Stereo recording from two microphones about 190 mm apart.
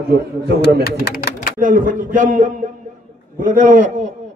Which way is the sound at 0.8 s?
55° left (ahead or behind).